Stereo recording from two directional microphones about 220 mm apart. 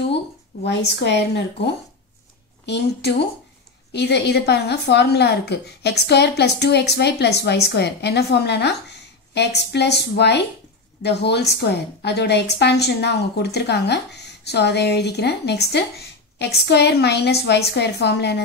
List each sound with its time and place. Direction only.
0.7 s a woman's voice: 50° left (ahead or behind)